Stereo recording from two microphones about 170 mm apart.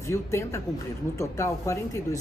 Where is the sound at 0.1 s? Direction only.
15° left (ahead or behind).